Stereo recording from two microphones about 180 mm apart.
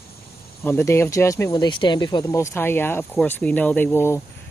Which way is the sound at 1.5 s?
25° left (ahead or behind).